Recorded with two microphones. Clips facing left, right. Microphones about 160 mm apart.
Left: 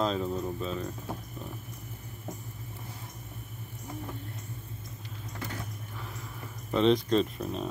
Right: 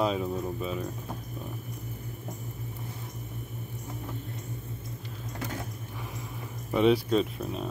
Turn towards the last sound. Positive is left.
turn(degrees=0)  # may be behind; listen again after turning